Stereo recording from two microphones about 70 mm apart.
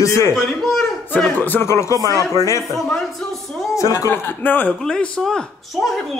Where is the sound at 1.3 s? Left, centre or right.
Left.